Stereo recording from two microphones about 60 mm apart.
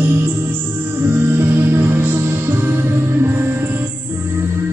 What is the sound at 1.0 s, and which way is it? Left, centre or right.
Music, right.